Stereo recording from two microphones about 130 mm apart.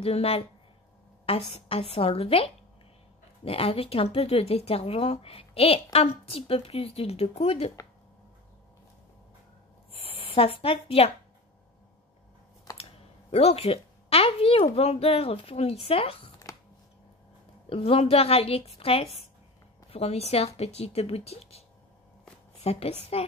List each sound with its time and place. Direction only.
0.0 s a woman's voice: 50° left (ahead or behind)
1.5 s a woman's voice: 50° left (ahead or behind)
10.0 s speech: 45° left (ahead or behind)
13.3 s a woman's voice: 55° left (ahead or behind)
17.6 s a woman's voice: 45° left (ahead or behind)